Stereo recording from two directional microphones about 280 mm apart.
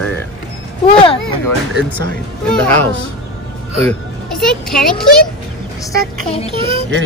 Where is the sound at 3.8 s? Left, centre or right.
Centre.